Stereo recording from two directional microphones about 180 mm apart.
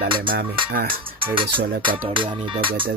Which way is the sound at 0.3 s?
50° right (ahead or behind).